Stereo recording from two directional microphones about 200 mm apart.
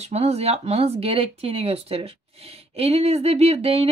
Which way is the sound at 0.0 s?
30° right (ahead or behind).